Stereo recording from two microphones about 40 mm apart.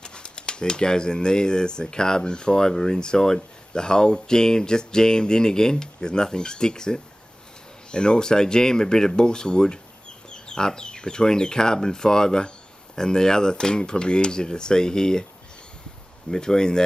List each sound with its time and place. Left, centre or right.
0.0 s speech: left
16.3 s speech: centre